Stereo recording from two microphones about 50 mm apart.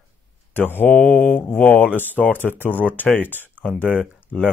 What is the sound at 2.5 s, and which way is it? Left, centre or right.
Speech, centre.